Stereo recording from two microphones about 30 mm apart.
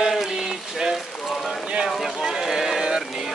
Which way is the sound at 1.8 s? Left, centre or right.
Centre.